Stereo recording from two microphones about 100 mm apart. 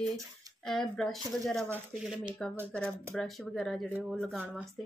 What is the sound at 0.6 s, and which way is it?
Speech, 5° left (ahead or behind).